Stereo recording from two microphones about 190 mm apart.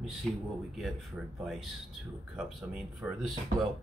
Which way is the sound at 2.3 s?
5° right (ahead or behind).